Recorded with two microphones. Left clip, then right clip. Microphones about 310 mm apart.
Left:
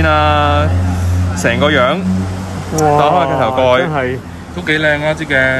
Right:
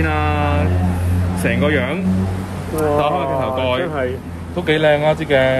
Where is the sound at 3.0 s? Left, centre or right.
Left.